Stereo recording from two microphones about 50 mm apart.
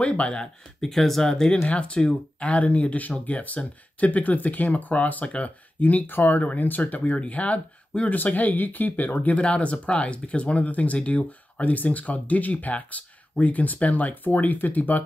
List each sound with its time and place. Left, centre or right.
0.0 s speech: left
9.4 s speech: left